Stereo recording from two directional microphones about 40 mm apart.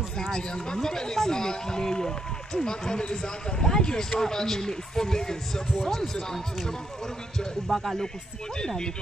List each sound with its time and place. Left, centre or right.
0.2 s a man's voice: centre
8.5 s speech: centre